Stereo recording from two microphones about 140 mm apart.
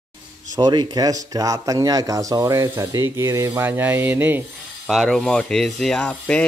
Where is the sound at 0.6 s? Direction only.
30° right (ahead or behind); by 4.5 s 15° right (ahead or behind).